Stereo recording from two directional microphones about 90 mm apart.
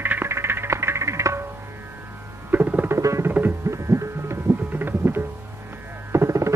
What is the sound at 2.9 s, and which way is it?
Music, 30° right (ahead or behind).